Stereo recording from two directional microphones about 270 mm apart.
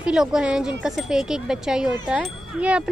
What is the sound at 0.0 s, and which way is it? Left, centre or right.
Speech, centre.